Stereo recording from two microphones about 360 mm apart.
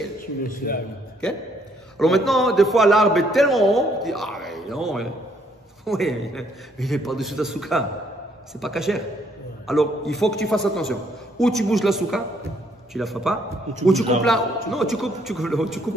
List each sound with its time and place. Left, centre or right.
0.6 s a man's voice: left
2.0 s a man's voice: centre